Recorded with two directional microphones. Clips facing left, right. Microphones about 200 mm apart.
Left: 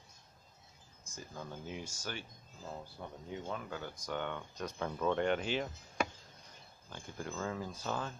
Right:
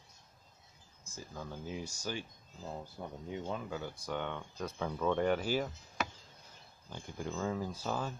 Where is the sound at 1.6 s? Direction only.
35° right (ahead or behind).